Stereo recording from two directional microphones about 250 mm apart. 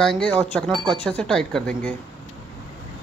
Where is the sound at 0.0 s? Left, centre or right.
Centre.